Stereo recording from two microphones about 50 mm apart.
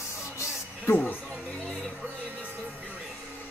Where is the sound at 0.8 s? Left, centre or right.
Left.